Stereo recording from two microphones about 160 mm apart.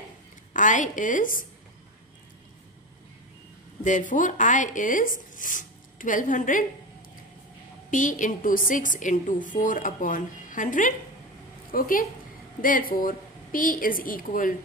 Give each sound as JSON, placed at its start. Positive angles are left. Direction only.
{"t": 0.5, "sound": "a woman's voice", "side_deg": 55}
{"t": 3.8, "sound": "a woman's voice", "side_deg": 55}
{"t": 7.9, "sound": "a woman's voice", "side_deg": 55}